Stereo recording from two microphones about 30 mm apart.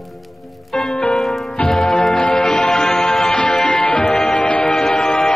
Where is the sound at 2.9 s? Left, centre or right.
Left.